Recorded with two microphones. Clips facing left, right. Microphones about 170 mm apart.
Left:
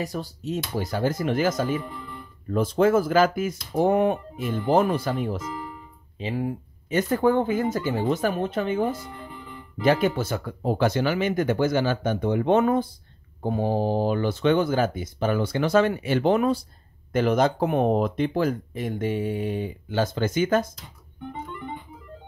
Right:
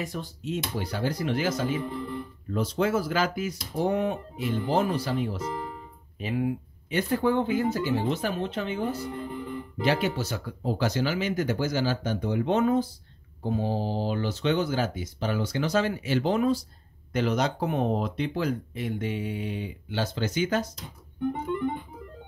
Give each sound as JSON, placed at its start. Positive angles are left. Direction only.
{"t": 0.0, "sound": "speech", "side_deg": 40}
{"t": 6.2, "sound": "speech", "side_deg": 40}
{"t": 9.8, "sound": "speech", "side_deg": 50}